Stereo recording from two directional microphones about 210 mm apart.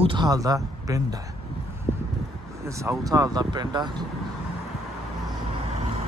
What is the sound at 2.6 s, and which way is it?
Speech, 15° right (ahead or behind).